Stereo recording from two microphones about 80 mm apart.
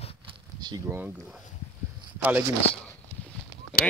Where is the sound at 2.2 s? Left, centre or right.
Right.